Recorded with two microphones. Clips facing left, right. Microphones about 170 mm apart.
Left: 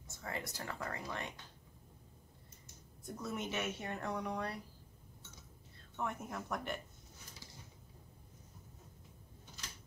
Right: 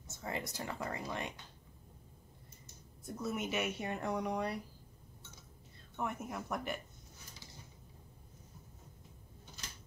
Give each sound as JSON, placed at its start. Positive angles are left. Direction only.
{"t": 0.2, "sound": "speech", "side_deg": -20}
{"t": 3.1, "sound": "speech", "side_deg": -5}
{"t": 5.9, "sound": "speech", "side_deg": -10}